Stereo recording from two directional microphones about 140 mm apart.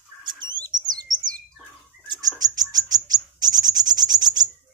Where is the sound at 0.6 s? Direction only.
30° right (ahead or behind).